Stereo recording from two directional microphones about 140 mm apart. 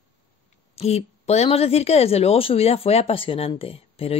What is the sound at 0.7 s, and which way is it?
A woman's voice, 50° left (ahead or behind).